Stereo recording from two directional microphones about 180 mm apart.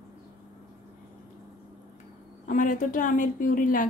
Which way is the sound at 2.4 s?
45° left (ahead or behind).